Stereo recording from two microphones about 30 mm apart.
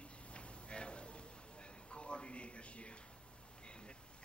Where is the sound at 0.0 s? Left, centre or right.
Left.